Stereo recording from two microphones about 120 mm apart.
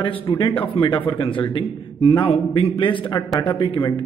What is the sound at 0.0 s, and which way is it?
A man's voice, 45° left (ahead or behind).